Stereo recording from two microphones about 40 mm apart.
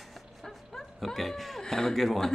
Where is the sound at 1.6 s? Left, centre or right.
Centre.